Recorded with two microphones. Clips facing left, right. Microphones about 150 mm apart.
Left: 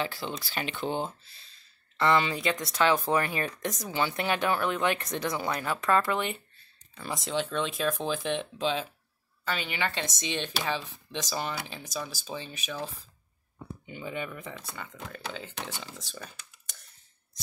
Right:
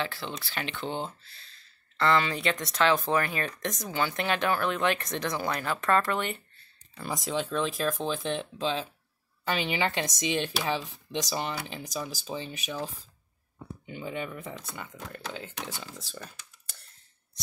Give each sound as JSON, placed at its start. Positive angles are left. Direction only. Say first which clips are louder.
{"t": 0.0, "sound": "speech", "louder": "left 1 dB", "side_deg": 15}
{"t": 2.5, "sound": "speech", "louder": "even", "side_deg": 0}
{"t": 3.0, "sound": "speech", "louder": "even", "side_deg": 15}
{"t": 9.4, "sound": "speech", "louder": "right 3 dB", "side_deg": -20}
{"t": 11.3, "sound": "speech", "louder": "left 2 dB", "side_deg": 0}
{"t": 11.8, "sound": "speech", "louder": "right 1 dB", "side_deg": -15}
{"t": 13.8, "sound": "speech", "louder": "right 1 dB", "side_deg": 0}
{"t": 16.2, "sound": "a sound", "louder": "even", "side_deg": 0}